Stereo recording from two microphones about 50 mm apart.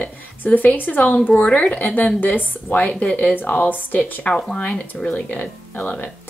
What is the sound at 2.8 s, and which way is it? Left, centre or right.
Speech, left.